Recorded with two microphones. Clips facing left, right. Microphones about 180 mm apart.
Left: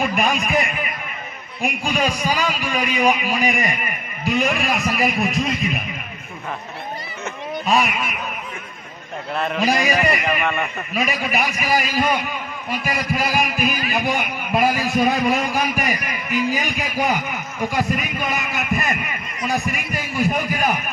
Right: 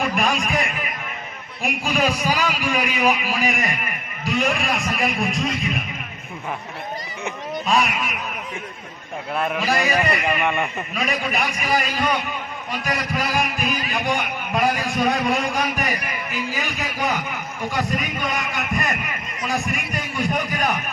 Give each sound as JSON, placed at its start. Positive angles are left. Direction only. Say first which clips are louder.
{"t": 0.1, "sound": "a man's voice", "louder": "left 2 dB", "side_deg": 0}
{"t": 7.6, "sound": "a man's voice", "louder": "left 1 dB", "side_deg": 0}
{"t": 9.3, "sound": "a man's voice", "louder": "even", "side_deg": -5}
{"t": 9.6, "sound": "a man's voice", "louder": "left 4 dB", "side_deg": 15}
{"t": 10.4, "sound": "a man's voice", "louder": "even", "side_deg": -15}
{"t": 10.9, "sound": "a man's voice", "louder": "left 2 dB", "side_deg": 5}